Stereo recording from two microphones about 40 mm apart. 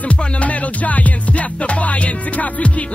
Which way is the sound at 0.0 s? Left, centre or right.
Left.